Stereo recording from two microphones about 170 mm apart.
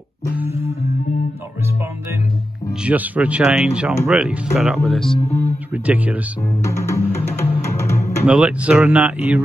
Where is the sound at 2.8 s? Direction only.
10° right (ahead or behind).